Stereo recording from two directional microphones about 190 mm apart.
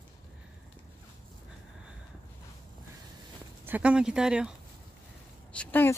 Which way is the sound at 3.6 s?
10° right (ahead or behind).